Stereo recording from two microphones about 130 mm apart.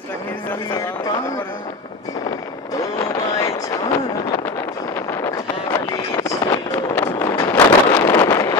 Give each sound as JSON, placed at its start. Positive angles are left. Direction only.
{"t": 3.0, "sound": "fireworks", "side_deg": 25}
{"t": 5.2, "sound": "a sound", "side_deg": 25}
{"t": 7.0, "sound": "vehicle", "side_deg": 20}
{"t": 7.5, "sound": "wind noise", "side_deg": 20}